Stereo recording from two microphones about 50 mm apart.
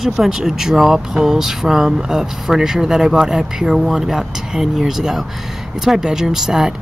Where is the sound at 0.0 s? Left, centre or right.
Centre.